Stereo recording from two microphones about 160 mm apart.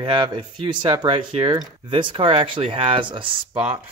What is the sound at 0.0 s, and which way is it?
Speech, 30° right (ahead or behind).